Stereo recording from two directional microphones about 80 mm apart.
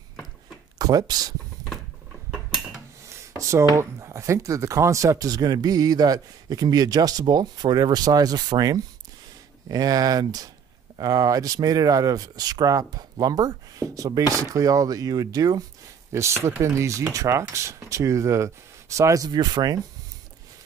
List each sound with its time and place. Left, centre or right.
0.7 s speech: right
3.1 s a sound: right
3.7 s speech: right
16.1 s speech: right
19.2 s speech: right